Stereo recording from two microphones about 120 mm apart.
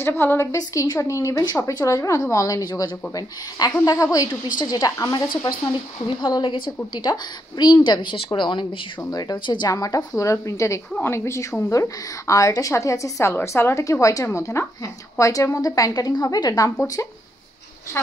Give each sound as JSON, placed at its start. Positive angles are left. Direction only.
{"t": 0.0, "sound": "a woman's voice", "side_deg": 20}